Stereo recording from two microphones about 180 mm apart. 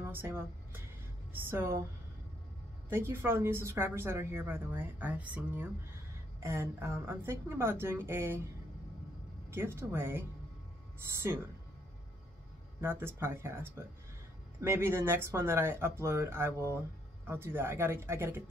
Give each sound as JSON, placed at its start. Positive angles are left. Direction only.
{"t": 0.0, "sound": "music", "side_deg": -15}
{"t": 1.3, "sound": "a woman's voice", "side_deg": -15}
{"t": 2.9, "sound": "a woman's voice", "side_deg": -15}
{"t": 9.5, "sound": "a woman's voice", "side_deg": -15}
{"t": 12.8, "sound": "a woman's voice", "side_deg": -10}